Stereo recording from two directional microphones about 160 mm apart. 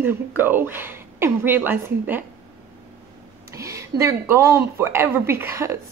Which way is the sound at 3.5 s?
20° right (ahead or behind).